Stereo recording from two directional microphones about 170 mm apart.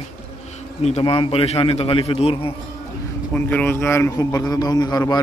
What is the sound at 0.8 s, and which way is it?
Speech, 35° left (ahead or behind).